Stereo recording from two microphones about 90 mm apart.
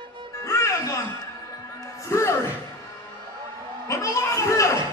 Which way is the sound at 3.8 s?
35° left (ahead or behind).